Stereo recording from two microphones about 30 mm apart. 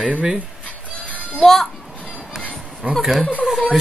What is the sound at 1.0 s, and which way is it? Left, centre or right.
Music, left.